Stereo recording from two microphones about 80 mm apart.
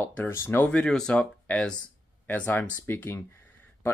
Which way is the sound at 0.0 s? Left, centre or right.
Left.